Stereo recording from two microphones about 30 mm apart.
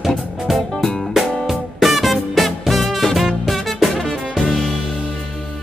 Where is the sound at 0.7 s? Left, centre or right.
Centre.